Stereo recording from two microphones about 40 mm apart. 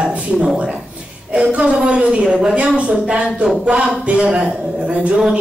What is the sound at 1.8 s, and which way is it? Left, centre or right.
A woman's voice, right.